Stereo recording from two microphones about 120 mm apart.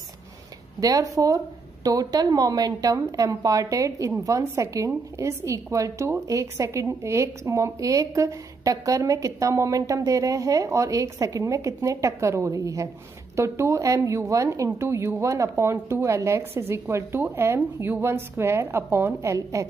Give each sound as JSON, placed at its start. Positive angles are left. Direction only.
{"t": 0.7, "sound": "a woman's voice", "side_deg": -30}